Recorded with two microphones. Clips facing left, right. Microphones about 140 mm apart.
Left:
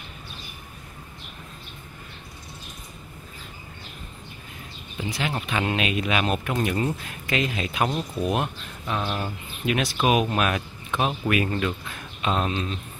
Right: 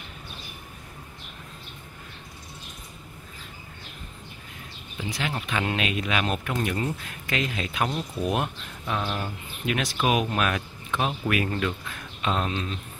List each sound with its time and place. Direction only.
5.2 s speech: 15° left (ahead or behind)
8.3 s speech: centre (ahead or behind)